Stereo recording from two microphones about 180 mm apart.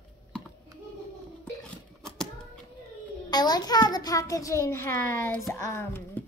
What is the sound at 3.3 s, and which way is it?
A child's voice, 20° left (ahead or behind).